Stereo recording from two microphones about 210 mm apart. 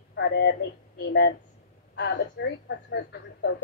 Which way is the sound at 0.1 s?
55° left (ahead or behind).